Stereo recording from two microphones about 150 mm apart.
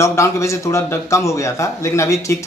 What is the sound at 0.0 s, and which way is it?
A man's voice, 20° left (ahead or behind).